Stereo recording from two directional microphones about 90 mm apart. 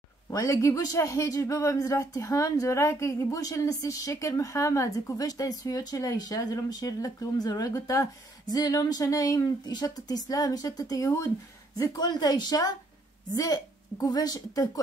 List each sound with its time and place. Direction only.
0.3 s speech: 40° left (ahead or behind)
12.0 s speech: 50° left (ahead or behind)